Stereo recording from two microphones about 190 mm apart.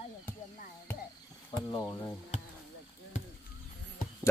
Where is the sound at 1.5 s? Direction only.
20° left (ahead or behind).